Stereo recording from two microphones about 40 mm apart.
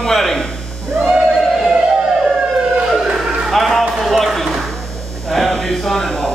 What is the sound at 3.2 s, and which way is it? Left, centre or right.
Music, centre.